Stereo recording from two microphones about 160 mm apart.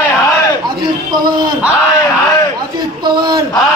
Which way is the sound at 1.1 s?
25° right (ahead or behind).